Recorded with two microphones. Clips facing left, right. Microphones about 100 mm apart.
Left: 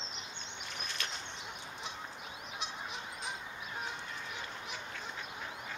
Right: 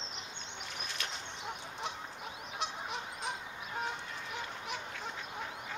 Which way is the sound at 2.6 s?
60° right (ahead or behind).